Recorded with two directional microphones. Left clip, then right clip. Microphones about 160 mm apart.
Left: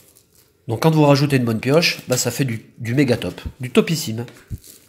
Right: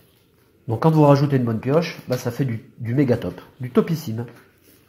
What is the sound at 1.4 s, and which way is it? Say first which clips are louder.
Speech: left 3 dB; 35° left (ahead or behind).